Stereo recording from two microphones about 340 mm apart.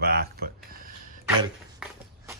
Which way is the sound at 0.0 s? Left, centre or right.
Right.